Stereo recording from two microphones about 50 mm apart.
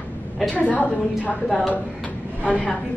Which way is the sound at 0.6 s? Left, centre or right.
Left.